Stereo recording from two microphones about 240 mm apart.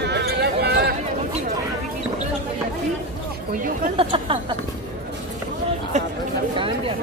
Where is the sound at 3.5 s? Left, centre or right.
Right.